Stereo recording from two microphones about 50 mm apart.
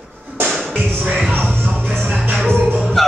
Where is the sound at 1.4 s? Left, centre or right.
Centre.